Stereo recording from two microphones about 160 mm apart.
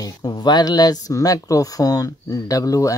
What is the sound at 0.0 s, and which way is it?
A man's voice, 25° left (ahead or behind).